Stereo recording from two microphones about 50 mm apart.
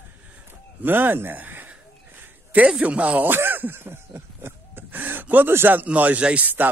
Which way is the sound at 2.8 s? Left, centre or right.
Right.